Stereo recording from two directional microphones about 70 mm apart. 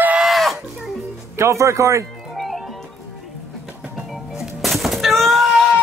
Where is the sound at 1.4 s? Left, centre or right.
Right.